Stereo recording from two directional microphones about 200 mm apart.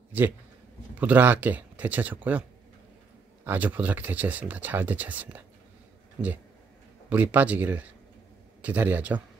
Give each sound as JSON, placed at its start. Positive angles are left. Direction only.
{"t": 0.9, "sound": "speech", "side_deg": -10}
{"t": 3.4, "sound": "speech", "side_deg": -10}